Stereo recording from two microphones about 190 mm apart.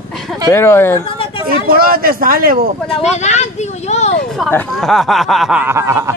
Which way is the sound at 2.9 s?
35° left (ahead or behind).